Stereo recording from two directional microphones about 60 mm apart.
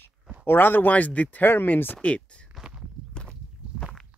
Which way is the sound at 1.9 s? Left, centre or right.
Centre.